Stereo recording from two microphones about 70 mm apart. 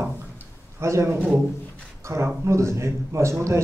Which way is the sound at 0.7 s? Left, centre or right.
Right.